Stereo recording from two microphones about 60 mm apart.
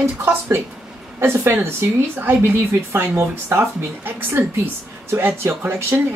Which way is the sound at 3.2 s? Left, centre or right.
Right.